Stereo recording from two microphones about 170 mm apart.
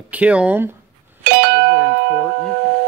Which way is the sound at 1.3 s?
65° right (ahead or behind).